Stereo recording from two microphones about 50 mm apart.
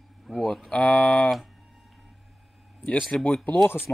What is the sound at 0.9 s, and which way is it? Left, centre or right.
Speech, left.